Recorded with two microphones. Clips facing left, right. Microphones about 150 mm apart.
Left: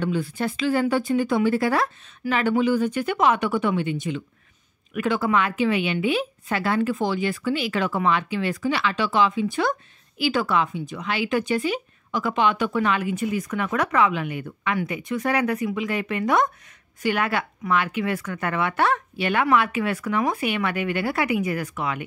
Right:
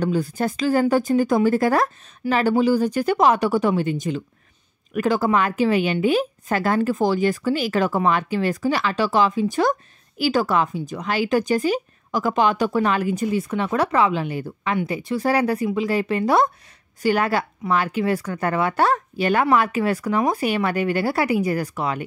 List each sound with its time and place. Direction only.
0.0 s speech: 40° right (ahead or behind)